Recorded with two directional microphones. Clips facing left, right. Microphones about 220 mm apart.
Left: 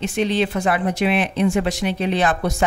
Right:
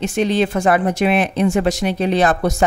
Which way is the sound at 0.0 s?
45° right (ahead or behind).